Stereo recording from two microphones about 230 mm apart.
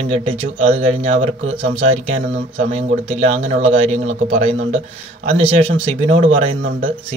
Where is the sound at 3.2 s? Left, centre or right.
Right.